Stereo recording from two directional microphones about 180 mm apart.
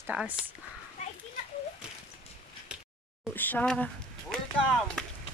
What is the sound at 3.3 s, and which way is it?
Speech, 10° left (ahead or behind).